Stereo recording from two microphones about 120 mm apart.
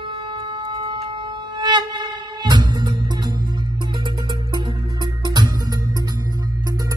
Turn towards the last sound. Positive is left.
turn(degrees=-35)  # may be behind; listen again after turning